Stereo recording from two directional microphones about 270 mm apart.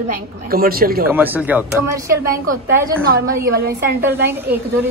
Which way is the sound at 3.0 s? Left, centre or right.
Right.